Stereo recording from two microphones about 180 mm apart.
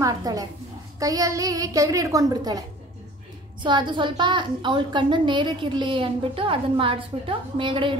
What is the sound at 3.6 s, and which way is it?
A woman's voice, 25° right (ahead or behind).